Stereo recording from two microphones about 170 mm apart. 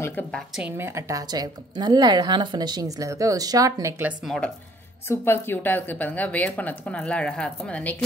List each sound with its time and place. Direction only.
0.0 s speech: 10° left (ahead or behind)
0.6 s a woman's voice: 10° right (ahead or behind)
5.0 s speech: 15° left (ahead or behind)